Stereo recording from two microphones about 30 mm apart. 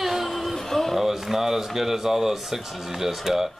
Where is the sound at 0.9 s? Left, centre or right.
Centre.